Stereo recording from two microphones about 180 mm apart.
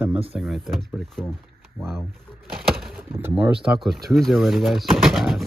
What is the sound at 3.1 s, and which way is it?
Speech, 10° right (ahead or behind).